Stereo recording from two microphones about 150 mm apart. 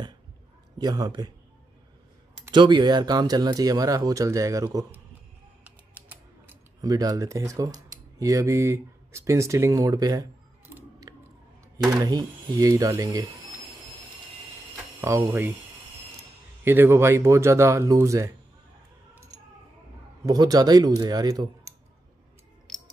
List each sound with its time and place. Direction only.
0.7 s speech: 25° right (ahead or behind)
2.5 s speech: 30° right (ahead or behind)
5.6 s music: 10° right (ahead or behind)
6.8 s speech: 25° right (ahead or behind)
11.1 s a sound: 25° right (ahead or behind)
11.8 s speech: 25° right (ahead or behind)
15.0 s speech: 15° right (ahead or behind)
16.6 s speech: 15° right (ahead or behind)
20.2 s speech: 25° right (ahead or behind)